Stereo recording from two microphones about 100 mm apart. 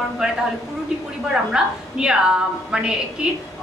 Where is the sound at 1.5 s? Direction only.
10° right (ahead or behind).